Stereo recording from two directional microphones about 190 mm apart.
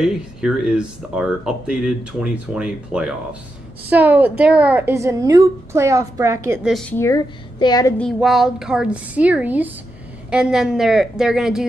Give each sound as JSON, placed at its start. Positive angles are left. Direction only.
{"t": 0.0, "sound": "a woman's voice", "side_deg": -5}
{"t": 6.6, "sound": "speech", "side_deg": 0}
{"t": 7.5, "sound": "a woman's voice", "side_deg": 20}
{"t": 8.0, "sound": "speech", "side_deg": 0}